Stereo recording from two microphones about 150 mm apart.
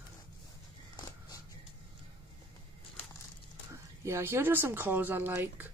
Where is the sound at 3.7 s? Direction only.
20° right (ahead or behind).